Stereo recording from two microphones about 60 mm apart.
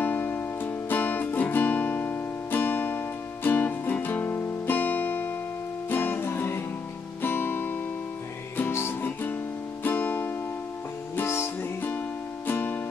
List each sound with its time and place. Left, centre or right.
0.0 s music: left
4.7 s music: left
9.8 s music: left
11.2 s music: left
12.4 s music: left